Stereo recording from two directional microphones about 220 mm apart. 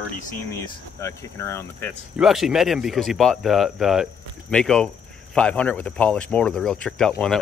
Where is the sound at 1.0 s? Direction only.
10° left (ahead or behind).